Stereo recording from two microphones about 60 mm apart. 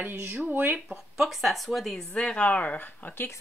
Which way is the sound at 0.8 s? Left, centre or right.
Centre.